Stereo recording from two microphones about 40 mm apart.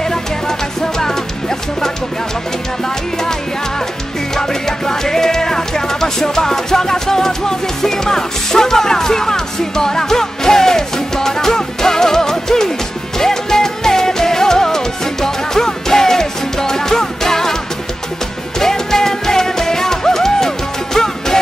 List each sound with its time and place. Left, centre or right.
0.1 s music: centre
4.4 s music: centre
18.6 s music: centre